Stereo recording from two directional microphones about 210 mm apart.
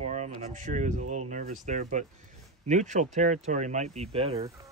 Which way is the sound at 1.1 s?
35° right (ahead or behind).